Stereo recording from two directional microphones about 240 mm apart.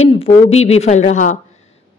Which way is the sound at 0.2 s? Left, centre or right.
Left.